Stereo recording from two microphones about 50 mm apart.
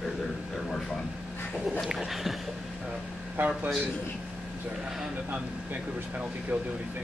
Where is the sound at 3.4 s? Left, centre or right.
Right.